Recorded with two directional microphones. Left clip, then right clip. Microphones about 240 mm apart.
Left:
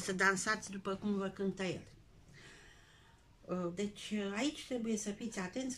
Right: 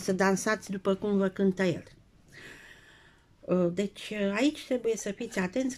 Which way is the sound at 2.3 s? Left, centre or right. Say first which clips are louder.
Right 10 dB; right.